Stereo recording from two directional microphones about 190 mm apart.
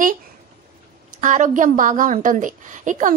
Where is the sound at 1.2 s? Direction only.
40° right (ahead or behind).